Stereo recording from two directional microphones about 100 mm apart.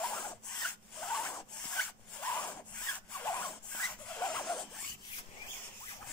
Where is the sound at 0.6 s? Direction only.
5° left (ahead or behind).